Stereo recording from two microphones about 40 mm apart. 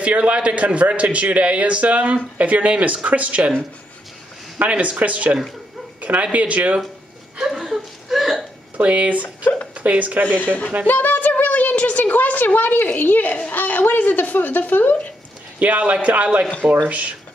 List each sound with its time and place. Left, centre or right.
0.0 s speech: right
4.6 s speech: right
5.9 s bow-wow: right
6.3 s speech: right
7.5 s chuckle: centre
8.7 s speech: right
9.2 s speech: left
9.8 s speech: right
10.2 s a woman's voice: left
15.6 s speech: right